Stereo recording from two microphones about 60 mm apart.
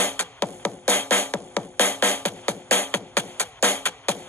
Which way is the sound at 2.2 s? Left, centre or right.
Left.